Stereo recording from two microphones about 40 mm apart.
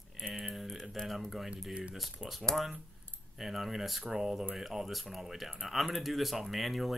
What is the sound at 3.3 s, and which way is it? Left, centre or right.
Speech, centre.